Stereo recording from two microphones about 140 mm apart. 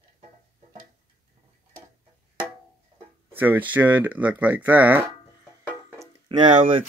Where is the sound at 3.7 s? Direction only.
10° right (ahead or behind).